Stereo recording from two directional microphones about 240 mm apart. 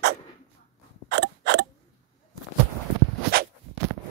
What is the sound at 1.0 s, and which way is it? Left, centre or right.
Creak, right.